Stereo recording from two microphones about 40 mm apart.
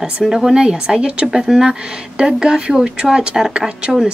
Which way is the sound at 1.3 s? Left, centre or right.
Centre.